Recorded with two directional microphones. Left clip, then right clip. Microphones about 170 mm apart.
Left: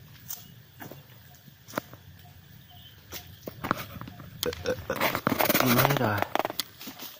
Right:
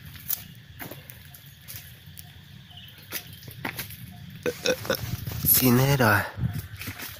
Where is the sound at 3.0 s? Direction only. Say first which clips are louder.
Right 2 dB; 10° right (ahead or behind).